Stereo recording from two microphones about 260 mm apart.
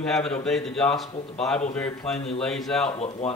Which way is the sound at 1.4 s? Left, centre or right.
Centre.